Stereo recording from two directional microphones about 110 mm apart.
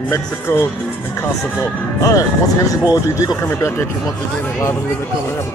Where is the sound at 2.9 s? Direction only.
35° left (ahead or behind).